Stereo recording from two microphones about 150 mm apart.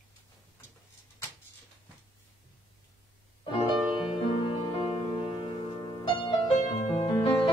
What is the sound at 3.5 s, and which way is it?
Music, 35° left (ahead or behind).